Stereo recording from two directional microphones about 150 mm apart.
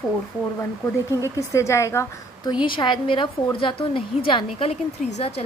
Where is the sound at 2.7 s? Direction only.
35° left (ahead or behind).